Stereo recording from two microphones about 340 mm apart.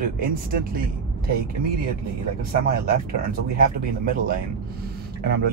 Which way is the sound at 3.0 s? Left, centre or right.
Right.